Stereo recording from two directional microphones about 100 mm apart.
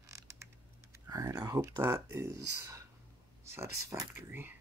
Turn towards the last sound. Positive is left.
turn(degrees=-20)  # may be behind; listen again after turning